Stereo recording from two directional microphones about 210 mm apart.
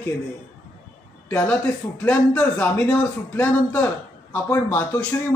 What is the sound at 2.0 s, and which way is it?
A man's voice, 5° left (ahead or behind).